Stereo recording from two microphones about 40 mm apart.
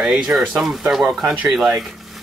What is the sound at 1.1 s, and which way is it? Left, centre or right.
Speech, centre.